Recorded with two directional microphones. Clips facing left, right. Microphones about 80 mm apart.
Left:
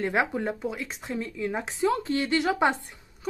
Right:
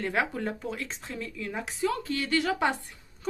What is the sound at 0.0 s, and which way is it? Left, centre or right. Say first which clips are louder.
A woman's voice: left 3 dB; left.